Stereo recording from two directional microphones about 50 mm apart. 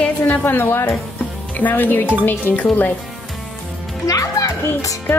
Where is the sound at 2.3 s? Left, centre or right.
Left.